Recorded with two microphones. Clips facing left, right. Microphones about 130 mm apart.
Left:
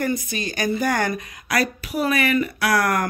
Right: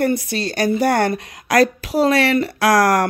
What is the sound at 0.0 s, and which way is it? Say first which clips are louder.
Speech: right 5 dB; 65° right (ahead or behind).